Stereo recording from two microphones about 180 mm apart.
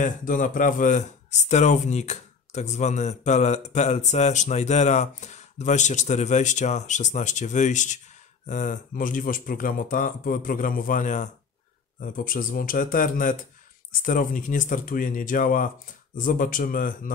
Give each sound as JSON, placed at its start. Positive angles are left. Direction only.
{"t": 0.0, "sound": "speech", "side_deg": 45}